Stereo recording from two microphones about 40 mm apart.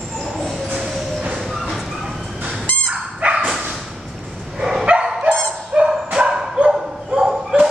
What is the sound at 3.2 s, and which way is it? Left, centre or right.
Dog, right.